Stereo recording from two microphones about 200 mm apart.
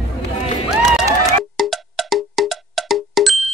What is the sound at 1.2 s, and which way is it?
Music, centre (ahead or behind).